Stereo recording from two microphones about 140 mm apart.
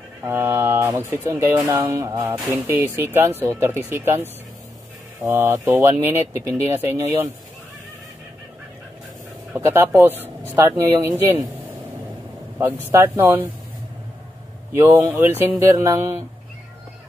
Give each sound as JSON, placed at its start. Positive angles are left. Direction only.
{"t": 0.2, "sound": "speech", "side_deg": -15}
{"t": 9.6, "sound": "speech", "side_deg": -15}
{"t": 12.9, "sound": "speech", "side_deg": -20}
{"t": 14.7, "sound": "speech", "side_deg": -20}